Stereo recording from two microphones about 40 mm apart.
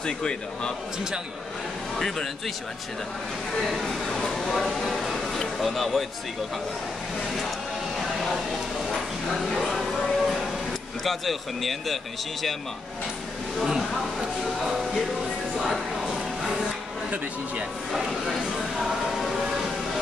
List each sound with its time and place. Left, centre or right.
0.0 s speech: left
2.0 s a man's voice: centre
3.6 s speech: centre
8.8 s speech: centre
9.7 s music: centre
11.1 s speech: centre
13.6 s speech: centre
15.5 s a sound: centre
18.1 s music: centre